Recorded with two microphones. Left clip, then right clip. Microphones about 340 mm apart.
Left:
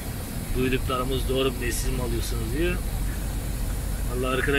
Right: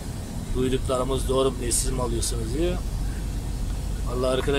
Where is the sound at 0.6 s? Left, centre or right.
Centre.